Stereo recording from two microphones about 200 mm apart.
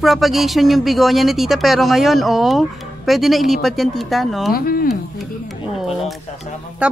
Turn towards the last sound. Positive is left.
turn(degrees=-5)  # may be behind; listen again after turning